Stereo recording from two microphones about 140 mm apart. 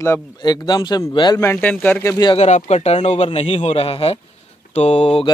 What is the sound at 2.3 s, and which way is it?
A man's voice, 55° left (ahead or behind).